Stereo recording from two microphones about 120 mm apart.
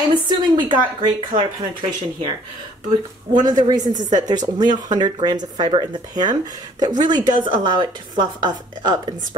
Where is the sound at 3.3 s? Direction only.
35° right (ahead or behind).